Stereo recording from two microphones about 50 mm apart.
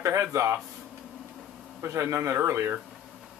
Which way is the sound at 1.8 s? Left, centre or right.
Right.